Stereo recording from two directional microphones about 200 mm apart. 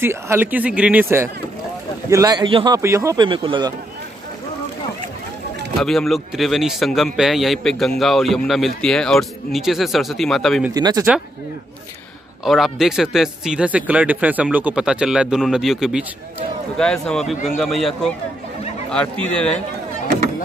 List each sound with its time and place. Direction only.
0.0 s speech: 10° right (ahead or behind)
5.8 s speech: centre (ahead or behind)
10.7 s speech: 20° right (ahead or behind)
12.4 s speech: centre (ahead or behind)